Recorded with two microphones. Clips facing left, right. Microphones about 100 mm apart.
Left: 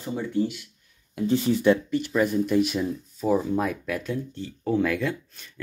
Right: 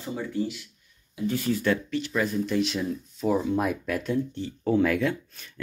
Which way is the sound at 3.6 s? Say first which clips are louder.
Even; 10° right (ahead or behind).